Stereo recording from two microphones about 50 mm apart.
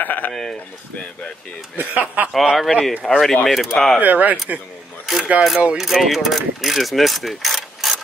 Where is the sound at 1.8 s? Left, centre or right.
Right.